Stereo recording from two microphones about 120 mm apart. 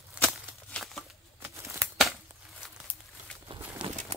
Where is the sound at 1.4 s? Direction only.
25° right (ahead or behind).